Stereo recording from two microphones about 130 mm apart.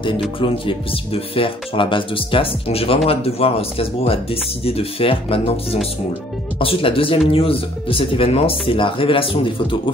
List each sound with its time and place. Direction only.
0.0 s speech: 40° left (ahead or behind)